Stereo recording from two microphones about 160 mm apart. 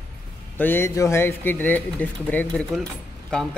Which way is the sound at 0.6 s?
15° left (ahead or behind).